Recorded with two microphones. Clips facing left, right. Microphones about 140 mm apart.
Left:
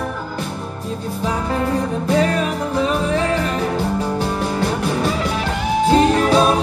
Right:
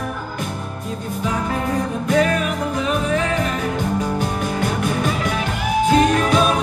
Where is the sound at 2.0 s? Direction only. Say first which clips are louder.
Even; 30° left (ahead or behind).